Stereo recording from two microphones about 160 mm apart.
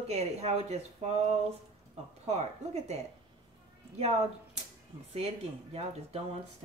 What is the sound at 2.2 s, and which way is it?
Speech, 45° right (ahead or behind).